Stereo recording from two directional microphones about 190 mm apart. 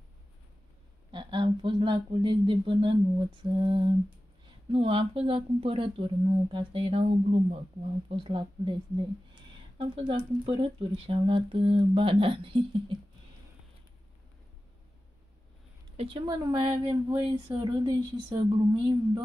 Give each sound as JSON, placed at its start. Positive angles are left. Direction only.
{"t": 1.1, "sound": "speech", "side_deg": -25}
{"t": 16.0, "sound": "speech", "side_deg": -25}